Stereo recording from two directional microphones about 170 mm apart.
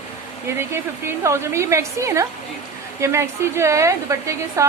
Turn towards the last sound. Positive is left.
turn(degrees=-15)  # may be behind; listen again after turning